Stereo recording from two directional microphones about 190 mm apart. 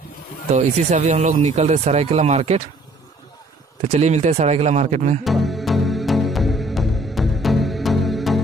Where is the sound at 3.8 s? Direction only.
35° right (ahead or behind).